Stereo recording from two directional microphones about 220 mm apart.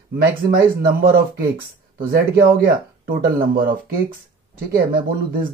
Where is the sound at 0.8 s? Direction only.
45° right (ahead or behind).